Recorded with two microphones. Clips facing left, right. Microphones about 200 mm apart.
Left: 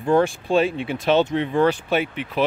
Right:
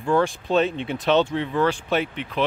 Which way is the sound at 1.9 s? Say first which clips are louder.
Left 2 dB; 5° left (ahead or behind).